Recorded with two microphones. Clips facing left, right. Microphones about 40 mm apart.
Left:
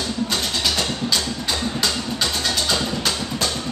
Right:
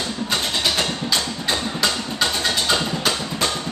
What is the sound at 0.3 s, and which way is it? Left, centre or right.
Vehicle, right.